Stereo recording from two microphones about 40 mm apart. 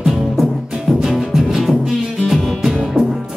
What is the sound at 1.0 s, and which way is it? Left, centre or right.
Music, centre.